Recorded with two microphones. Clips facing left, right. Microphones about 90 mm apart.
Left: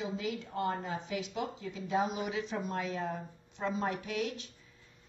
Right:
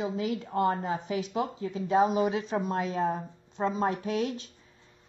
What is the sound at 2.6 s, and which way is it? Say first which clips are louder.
A woman's voice: right 7 dB; 25° right (ahead or behind).